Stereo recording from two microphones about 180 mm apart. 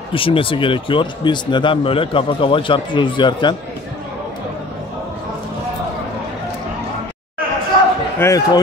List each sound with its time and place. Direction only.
0.1 s speech: 30° left (ahead or behind)
8.2 s speech: 15° left (ahead or behind)